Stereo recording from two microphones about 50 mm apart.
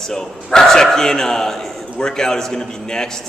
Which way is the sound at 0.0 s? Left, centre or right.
Centre.